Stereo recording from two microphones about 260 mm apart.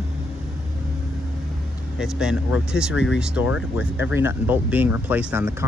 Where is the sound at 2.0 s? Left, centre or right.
Centre.